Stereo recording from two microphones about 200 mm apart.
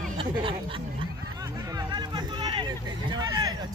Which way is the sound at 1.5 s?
20° right (ahead or behind).